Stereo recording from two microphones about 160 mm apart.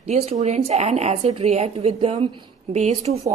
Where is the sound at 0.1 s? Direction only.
40° right (ahead or behind).